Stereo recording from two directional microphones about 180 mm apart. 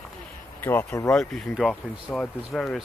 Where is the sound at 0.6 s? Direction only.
15° left (ahead or behind).